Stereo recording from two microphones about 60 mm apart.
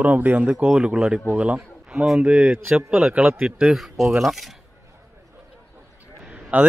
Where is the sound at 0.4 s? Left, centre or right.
Centre.